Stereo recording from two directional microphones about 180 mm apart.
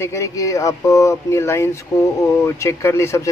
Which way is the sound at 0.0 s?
15° left (ahead or behind).